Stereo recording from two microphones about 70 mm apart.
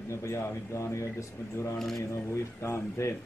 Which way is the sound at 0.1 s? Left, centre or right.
Left.